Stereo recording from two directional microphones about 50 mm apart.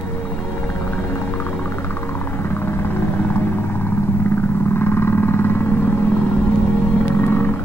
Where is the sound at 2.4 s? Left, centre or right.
Left.